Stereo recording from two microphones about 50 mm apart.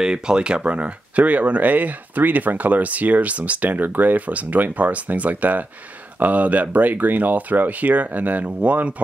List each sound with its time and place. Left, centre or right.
0.0 s speech: centre